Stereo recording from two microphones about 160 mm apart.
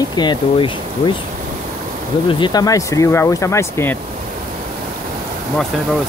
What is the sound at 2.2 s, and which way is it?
Speech, 25° left (ahead or behind).